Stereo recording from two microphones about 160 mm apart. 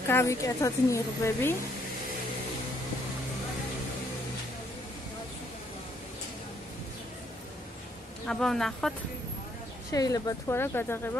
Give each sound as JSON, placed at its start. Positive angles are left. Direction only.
{"t": 0.1, "sound": "a woman's voice", "side_deg": 20}
{"t": 8.3, "sound": "speech", "side_deg": 5}
{"t": 9.9, "sound": "a woman's voice", "side_deg": 25}